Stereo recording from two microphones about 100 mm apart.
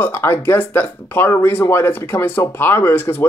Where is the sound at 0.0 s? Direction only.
25° left (ahead or behind).